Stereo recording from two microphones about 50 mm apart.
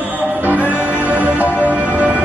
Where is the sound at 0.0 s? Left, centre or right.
Right.